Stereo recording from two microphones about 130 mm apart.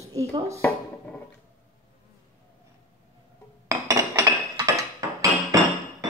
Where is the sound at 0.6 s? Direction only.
10° left (ahead or behind).